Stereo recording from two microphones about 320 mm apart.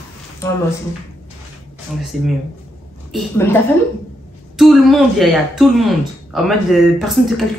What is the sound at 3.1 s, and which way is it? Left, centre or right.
Speech, centre.